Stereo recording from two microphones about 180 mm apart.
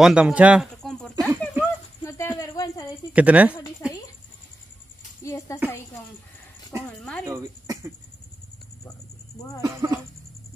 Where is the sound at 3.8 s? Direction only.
5° right (ahead or behind).